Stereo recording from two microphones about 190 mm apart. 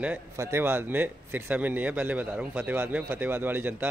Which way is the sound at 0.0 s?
10° right (ahead or behind).